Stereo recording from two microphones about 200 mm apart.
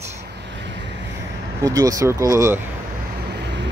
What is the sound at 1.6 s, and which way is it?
Speech, 15° right (ahead or behind).